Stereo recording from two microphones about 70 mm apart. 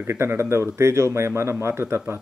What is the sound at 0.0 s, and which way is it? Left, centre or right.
Speech, right.